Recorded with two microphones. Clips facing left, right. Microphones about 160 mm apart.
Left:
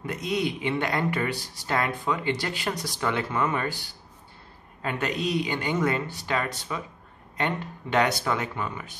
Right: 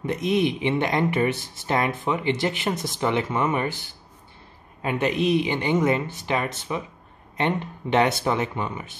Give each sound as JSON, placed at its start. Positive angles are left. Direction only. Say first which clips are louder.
{"t": 0.0, "sound": "speech", "louder": "right 5 dB", "side_deg": -20}
{"t": 4.8, "sound": "speech", "louder": "right 6 dB", "side_deg": -20}